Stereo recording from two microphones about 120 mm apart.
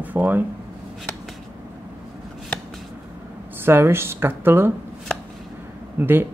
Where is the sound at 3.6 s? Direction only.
20° right (ahead or behind).